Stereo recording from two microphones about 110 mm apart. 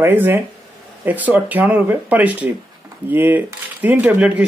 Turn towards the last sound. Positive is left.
turn(degrees=-15)  # may be behind; listen again after turning